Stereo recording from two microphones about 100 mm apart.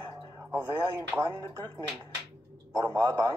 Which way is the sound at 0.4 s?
20° right (ahead or behind).